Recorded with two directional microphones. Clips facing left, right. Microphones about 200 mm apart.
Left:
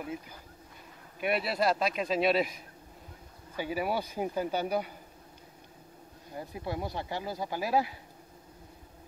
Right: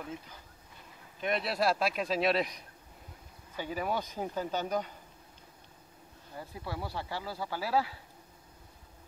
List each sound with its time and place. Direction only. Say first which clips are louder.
1.2 s a man's voice: left 2 dB; 5° left (ahead or behind)
6.3 s speech: left 4 dB; 20° left (ahead or behind)